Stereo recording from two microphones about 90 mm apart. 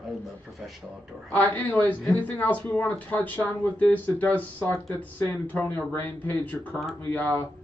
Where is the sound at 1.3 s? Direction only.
20° left (ahead or behind).